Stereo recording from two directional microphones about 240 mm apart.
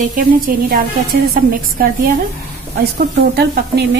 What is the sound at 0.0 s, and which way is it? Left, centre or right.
Speech, right.